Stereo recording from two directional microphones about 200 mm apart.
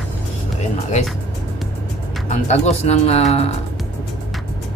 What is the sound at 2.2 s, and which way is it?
Speech, 35° left (ahead or behind).